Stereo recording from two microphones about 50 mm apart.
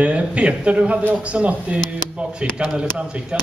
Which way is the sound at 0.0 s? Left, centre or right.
Right.